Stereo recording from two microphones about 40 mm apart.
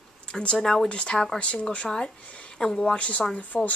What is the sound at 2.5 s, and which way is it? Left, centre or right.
Speech, centre.